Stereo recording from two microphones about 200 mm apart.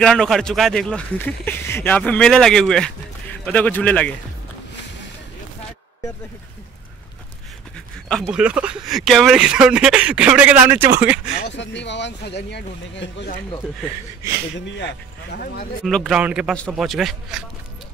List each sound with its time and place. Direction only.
0.0 s speech: centre (ahead or behind)
8.1 s speech: centre (ahead or behind)
11.4 s speech: 60° left (ahead or behind)
14.8 s speech: 60° left (ahead or behind)
15.8 s speech: centre (ahead or behind)